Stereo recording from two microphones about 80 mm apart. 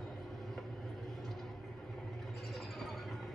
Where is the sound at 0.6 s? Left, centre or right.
Centre.